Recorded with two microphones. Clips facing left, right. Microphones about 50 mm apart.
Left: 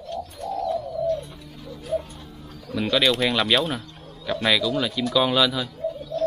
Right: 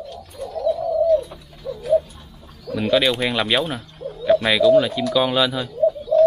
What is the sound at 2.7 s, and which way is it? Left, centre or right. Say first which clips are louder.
Speech: right 3 dB; centre.